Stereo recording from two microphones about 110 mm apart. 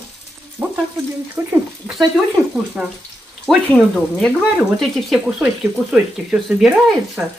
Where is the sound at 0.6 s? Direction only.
25° right (ahead or behind).